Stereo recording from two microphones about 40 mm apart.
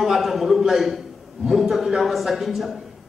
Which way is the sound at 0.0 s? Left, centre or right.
Centre.